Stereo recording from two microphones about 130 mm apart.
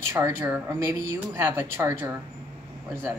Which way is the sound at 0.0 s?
20° right (ahead or behind).